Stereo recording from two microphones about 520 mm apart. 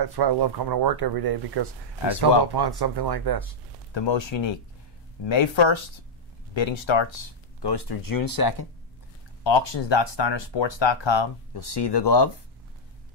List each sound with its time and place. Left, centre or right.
0.0 s speech: right
3.9 s speech: left
9.4 s speech: left